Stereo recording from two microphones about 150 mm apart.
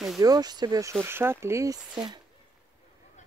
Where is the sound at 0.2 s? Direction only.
25° right (ahead or behind).